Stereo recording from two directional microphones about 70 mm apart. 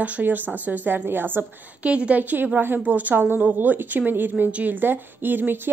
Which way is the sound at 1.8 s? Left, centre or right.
Centre.